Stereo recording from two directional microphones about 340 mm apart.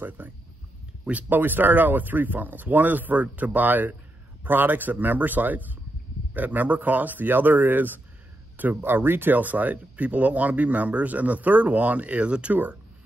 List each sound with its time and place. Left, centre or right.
0.2 s speech: centre